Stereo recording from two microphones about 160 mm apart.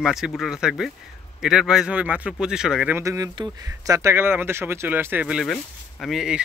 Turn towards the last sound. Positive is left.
turn(degrees=0)  # may be behind; listen again after turning